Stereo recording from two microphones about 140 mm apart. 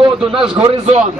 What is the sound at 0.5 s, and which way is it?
Speech, 50° right (ahead or behind).